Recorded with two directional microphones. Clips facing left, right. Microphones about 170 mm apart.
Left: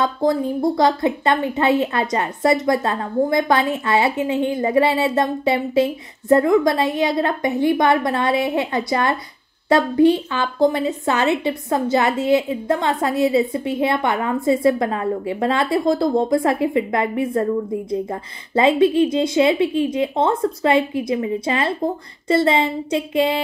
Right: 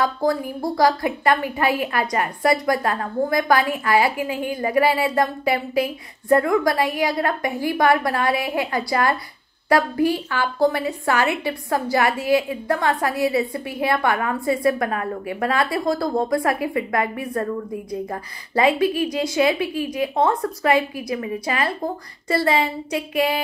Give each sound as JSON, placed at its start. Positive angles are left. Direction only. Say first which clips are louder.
{"t": 0.0, "sound": "a woman's voice", "louder": "left 2 dB", "side_deg": 20}